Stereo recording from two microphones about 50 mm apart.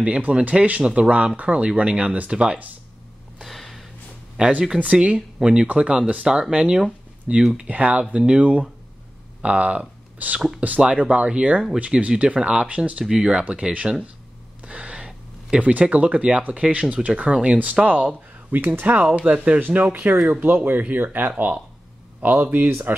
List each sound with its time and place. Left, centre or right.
0.0 s speech: right
3.4 s a sound: centre
4.4 s speech: right
6.5 s speech: centre
13.0 s speech: centre
14.6 s a sound: right
15.5 s speech: right